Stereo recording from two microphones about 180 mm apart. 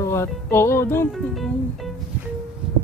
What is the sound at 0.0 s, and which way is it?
Speech, 15° left (ahead or behind).